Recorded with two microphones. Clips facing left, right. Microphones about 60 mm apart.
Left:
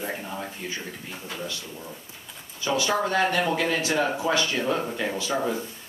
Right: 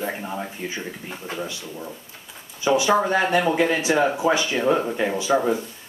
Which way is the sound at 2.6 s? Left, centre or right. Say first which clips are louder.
Right 6 dB; centre.